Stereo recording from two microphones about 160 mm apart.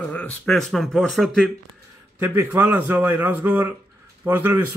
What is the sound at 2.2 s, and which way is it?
A man's voice, 10° right (ahead or behind).